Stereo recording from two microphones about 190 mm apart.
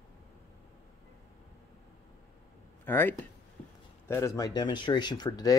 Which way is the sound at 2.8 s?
10° left (ahead or behind).